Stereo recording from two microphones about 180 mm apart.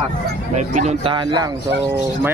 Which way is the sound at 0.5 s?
40° right (ahead or behind).